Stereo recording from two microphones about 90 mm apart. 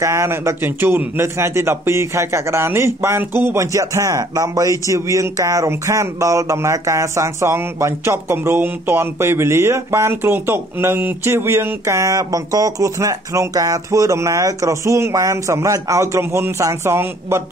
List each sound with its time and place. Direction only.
0.0 s a man's voice: 30° right (ahead or behind)